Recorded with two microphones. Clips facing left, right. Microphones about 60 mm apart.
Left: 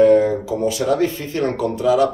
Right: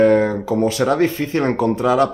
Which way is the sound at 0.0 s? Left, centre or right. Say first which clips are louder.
Left 1 dB; right.